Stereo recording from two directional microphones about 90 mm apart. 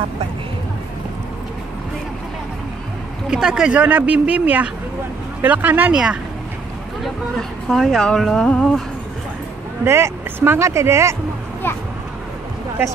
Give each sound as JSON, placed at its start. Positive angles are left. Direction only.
{"t": 3.3, "sound": "a woman's voice", "side_deg": -10}
{"t": 7.0, "sound": "speech", "side_deg": 5}
{"t": 9.8, "sound": "speech", "side_deg": -30}